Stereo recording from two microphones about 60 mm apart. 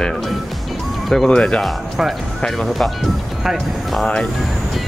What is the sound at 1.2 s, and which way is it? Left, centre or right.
Music, centre.